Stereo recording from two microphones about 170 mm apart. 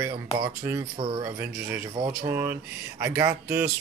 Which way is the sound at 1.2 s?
15° right (ahead or behind).